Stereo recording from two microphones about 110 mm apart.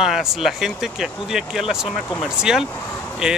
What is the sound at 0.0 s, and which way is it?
Speech, 5° right (ahead or behind).